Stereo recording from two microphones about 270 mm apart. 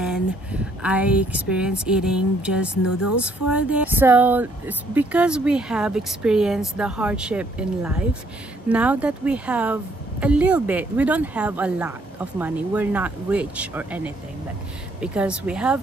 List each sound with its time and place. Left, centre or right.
0.0 s speech: centre
2.7 s speech: left
3.5 s speech: centre